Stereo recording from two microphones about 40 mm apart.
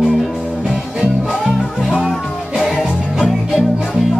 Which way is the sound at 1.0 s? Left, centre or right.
Right.